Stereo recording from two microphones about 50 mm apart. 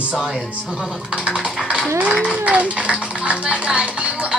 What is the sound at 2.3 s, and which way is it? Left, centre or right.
Speech, right.